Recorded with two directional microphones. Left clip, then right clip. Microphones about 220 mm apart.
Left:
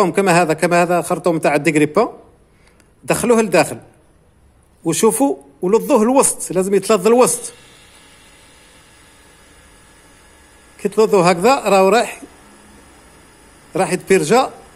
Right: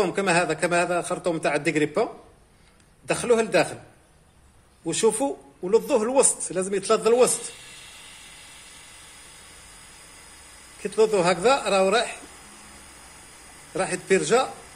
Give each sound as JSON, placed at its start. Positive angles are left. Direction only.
{"t": 0.0, "sound": "speech", "side_deg": 40}
{"t": 3.1, "sound": "speech", "side_deg": 40}
{"t": 4.8, "sound": "speech", "side_deg": 40}
{"t": 10.8, "sound": "speech", "side_deg": 35}
{"t": 13.7, "sound": "speech", "side_deg": 40}